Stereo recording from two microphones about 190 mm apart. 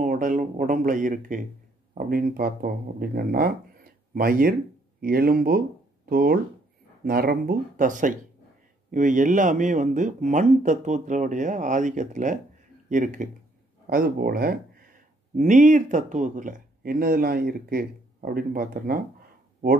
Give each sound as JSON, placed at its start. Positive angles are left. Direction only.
{"t": 0.0, "sound": "speech", "side_deg": -45}